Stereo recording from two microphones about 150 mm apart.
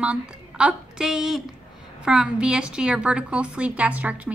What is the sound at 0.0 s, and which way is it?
A woman's voice, 5° right (ahead or behind).